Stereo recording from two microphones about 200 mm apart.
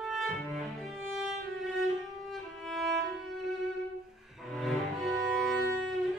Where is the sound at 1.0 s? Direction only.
Centre (ahead or behind).